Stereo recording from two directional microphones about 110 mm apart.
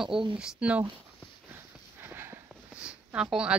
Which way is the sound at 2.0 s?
20° right (ahead or behind).